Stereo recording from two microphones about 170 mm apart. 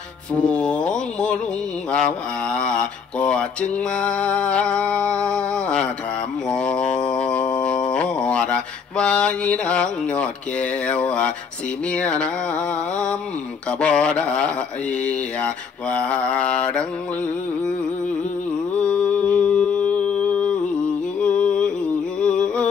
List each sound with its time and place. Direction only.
0.3 s mantra: 5° left (ahead or behind)
18.8 s a sound: 5° left (ahead or behind)
22.2 s music: 5° left (ahead or behind)